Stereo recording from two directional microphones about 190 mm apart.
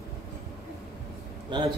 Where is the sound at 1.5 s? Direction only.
25° right (ahead or behind).